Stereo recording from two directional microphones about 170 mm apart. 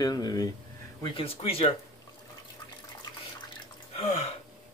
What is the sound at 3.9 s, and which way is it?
Gasp, 40° left (ahead or behind).